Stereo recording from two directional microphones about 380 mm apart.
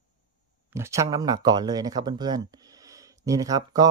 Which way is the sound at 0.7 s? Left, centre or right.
Centre.